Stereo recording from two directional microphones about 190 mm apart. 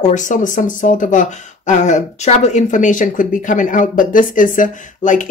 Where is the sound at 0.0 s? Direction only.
40° left (ahead or behind).